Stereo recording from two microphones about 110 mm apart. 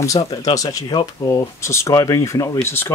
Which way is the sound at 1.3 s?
30° left (ahead or behind).